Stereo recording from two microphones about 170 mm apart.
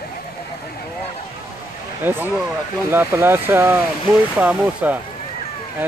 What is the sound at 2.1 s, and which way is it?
Speech, 10° right (ahead or behind).